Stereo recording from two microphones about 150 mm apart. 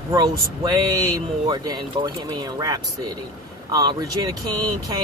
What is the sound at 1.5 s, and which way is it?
Speech, 30° right (ahead or behind).